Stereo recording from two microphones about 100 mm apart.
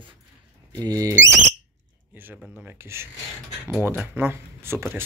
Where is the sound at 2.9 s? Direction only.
25° right (ahead or behind).